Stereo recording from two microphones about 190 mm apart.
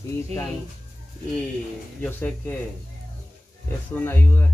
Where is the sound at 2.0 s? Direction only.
10° left (ahead or behind).